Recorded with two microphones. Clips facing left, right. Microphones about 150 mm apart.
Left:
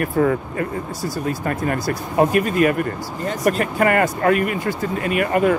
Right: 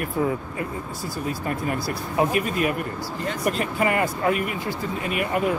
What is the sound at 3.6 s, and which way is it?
Speech, 65° left (ahead or behind).